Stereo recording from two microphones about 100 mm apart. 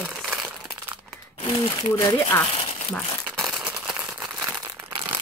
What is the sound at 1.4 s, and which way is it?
Speech, 55° left (ahead or behind).